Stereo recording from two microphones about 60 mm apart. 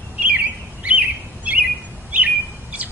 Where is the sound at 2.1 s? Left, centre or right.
Right.